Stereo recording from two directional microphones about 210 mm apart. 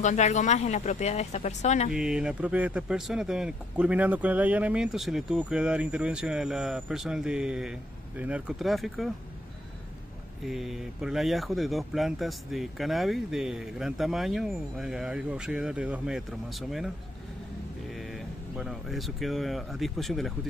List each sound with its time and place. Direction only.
0.0 s speech: 35° left (ahead or behind)
1.9 s speech: 5° right (ahead or behind)
10.4 s speech: centre (ahead or behind)
18.6 s speech: centre (ahead or behind)